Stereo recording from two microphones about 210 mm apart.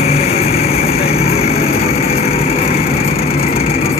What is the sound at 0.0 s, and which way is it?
Vehicle, 30° left (ahead or behind).